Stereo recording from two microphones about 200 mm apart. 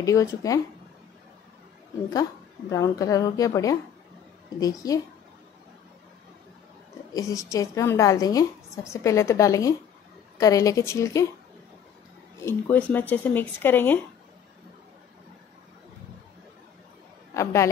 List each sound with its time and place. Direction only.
0.0 s speech: 15° left (ahead or behind)
2.7 s speech: 15° left (ahead or behind)
4.8 s speech: 15° left (ahead or behind)
7.2 s speech: 15° left (ahead or behind)
12.4 s speech: 10° left (ahead or behind)
17.3 s a man's voice: 15° left (ahead or behind)